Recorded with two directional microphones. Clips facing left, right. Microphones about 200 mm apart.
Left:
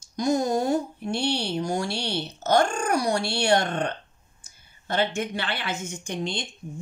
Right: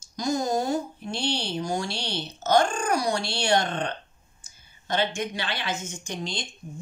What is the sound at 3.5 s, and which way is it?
Speech, 45° left (ahead or behind).